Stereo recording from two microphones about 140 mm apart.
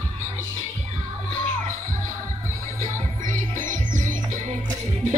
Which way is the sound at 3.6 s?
70° right (ahead or behind).